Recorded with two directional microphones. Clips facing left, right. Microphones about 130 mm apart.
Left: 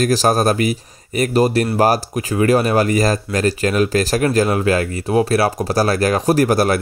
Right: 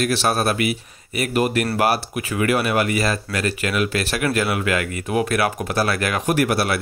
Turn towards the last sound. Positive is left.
turn(degrees=40)  # may be behind; listen again after turning